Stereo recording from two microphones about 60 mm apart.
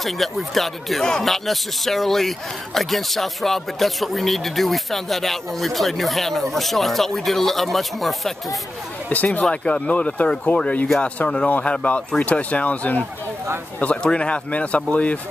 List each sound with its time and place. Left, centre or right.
0.0 s speech: centre
9.1 s speech: left
14.0 s speech: centre